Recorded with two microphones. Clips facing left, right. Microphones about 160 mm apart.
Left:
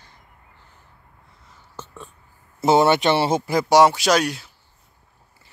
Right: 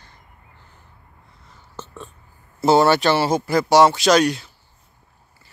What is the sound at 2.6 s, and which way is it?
Speech, 20° left (ahead or behind).